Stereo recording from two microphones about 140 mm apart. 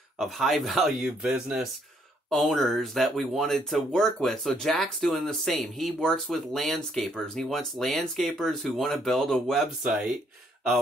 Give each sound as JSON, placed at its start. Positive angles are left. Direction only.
{"t": 0.2, "sound": "speech", "side_deg": 0}